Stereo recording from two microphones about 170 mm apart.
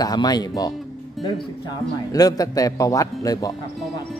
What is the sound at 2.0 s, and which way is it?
A woman's voice, 20° left (ahead or behind).